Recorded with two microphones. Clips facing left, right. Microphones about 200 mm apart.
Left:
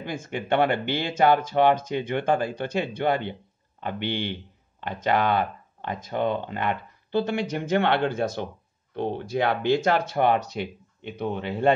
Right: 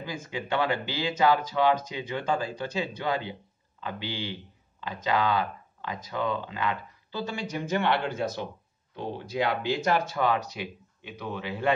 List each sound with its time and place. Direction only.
0.0 s speech: 60° left (ahead or behind)